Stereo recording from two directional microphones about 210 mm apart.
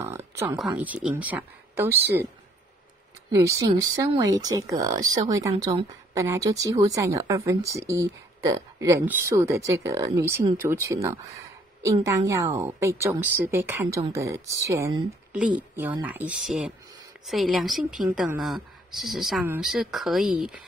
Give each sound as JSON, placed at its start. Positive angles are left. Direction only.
{"t": 0.0, "sound": "a sound", "side_deg": -10}
{"t": 0.7, "sound": "a woman's voice", "side_deg": -5}
{"t": 3.3, "sound": "a woman's voice", "side_deg": -15}